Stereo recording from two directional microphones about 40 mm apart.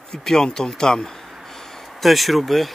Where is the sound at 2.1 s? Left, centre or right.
Centre.